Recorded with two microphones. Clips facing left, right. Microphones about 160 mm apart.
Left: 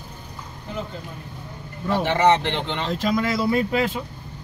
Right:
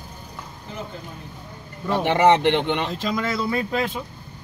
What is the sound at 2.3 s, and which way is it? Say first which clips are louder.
Speech: right 3 dB; 20° right (ahead or behind).